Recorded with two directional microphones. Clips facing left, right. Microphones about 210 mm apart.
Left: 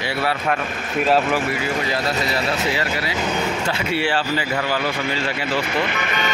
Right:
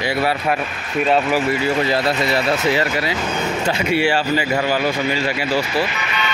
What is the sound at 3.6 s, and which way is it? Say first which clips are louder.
Speech: right 4 dB; 15° right (ahead or behind).